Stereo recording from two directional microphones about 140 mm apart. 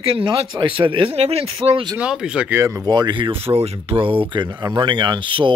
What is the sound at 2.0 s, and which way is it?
Speech, 5° right (ahead or behind).